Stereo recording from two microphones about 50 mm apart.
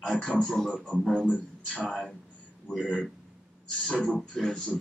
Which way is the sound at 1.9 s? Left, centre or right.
Centre.